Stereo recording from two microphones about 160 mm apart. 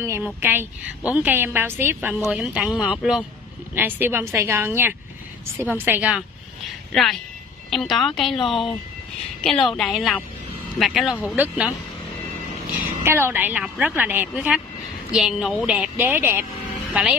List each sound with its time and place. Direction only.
0.0 s a woman's voice: 15° right (ahead or behind)
2.1 s a woman's voice: centre (ahead or behind)
13.0 s a woman's voice: 15° right (ahead or behind)